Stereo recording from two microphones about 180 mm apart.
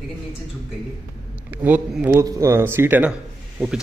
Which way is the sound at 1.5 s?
10° right (ahead or behind).